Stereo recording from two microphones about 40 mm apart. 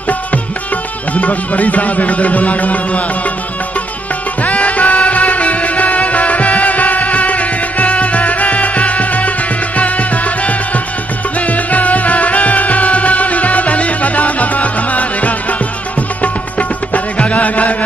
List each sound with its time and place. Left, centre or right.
1.1 s music: left
4.4 s music: left